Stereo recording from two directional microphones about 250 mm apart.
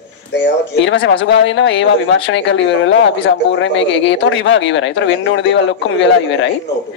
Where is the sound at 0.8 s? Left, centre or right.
Left.